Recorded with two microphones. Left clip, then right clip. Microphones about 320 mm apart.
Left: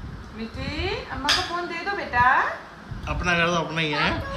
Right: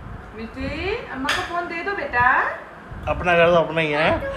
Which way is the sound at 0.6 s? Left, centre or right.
Left.